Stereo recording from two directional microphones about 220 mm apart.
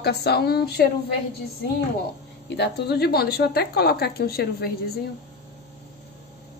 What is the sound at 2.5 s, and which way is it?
A woman's voice, 50° left (ahead or behind).